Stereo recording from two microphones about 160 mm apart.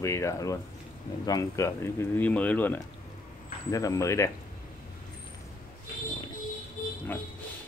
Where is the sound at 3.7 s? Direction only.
20° left (ahead or behind).